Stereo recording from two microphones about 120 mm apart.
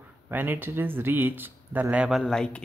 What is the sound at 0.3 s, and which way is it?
Speech, 15° right (ahead or behind).